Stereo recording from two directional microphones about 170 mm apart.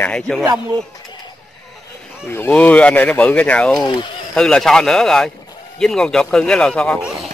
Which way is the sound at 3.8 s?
25° left (ahead or behind).